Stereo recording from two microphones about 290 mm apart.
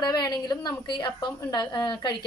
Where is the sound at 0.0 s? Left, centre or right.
Centre.